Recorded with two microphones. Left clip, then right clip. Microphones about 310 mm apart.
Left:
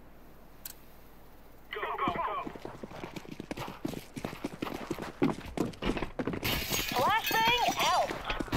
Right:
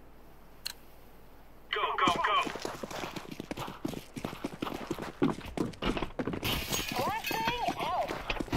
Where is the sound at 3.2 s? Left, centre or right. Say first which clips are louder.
Right 1 dB; centre.